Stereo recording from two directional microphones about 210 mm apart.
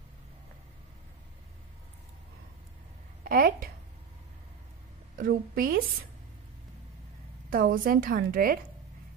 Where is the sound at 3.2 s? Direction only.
40° right (ahead or behind).